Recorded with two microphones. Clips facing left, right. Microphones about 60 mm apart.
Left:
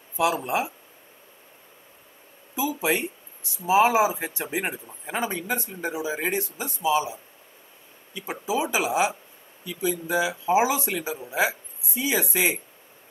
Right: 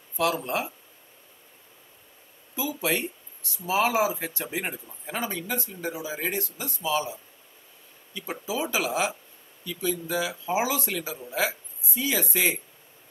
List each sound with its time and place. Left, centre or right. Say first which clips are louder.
0.2 s speech: left 2 dB; centre
2.5 s speech: left 3 dB; left